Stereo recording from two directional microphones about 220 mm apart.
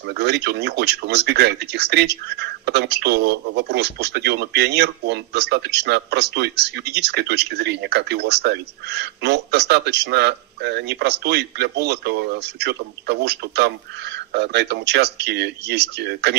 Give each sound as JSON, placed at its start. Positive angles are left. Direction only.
{"t": 0.0, "sound": "speech", "side_deg": -50}